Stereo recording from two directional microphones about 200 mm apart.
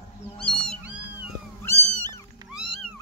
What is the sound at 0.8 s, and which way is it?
Cat, 10° right (ahead or behind).